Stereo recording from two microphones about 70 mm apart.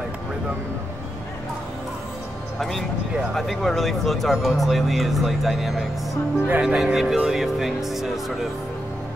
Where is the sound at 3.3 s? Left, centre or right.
Centre.